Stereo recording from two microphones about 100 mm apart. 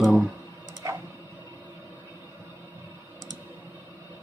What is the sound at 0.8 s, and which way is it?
Tick-tock, 35° right (ahead or behind).